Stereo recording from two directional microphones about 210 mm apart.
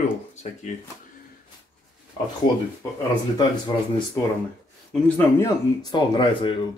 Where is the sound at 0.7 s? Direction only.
35° left (ahead or behind).